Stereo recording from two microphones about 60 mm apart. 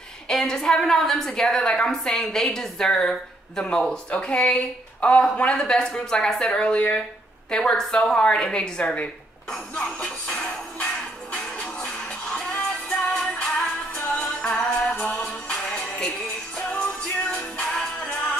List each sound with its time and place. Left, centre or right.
0.3 s a woman's voice: centre
9.5 s music: centre